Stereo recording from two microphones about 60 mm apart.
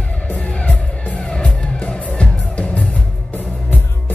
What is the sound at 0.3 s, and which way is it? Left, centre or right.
Music, left.